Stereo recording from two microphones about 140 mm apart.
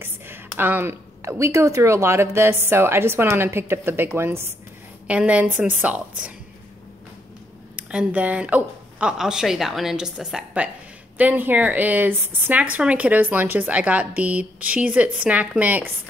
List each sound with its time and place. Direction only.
0.0 s a woman's voice: 15° right (ahead or behind)
7.7 s speech: 10° right (ahead or behind)